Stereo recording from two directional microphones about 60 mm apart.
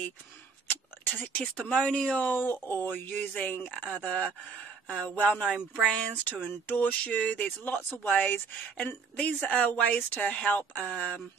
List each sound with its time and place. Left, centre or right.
0.7 s speech: left
3.6 s speech: centre